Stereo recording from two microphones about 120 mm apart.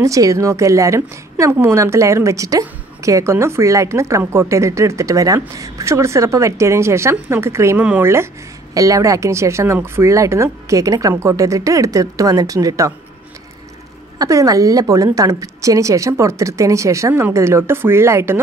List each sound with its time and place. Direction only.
0.0 s a woman's voice: 25° right (ahead or behind)
14.1 s a woman's voice: 30° right (ahead or behind)